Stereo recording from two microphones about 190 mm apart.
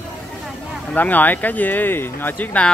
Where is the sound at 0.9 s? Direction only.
10° left (ahead or behind).